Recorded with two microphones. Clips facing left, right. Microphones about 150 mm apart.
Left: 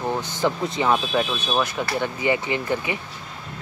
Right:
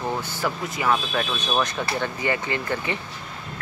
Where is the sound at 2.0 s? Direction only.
15° left (ahead or behind).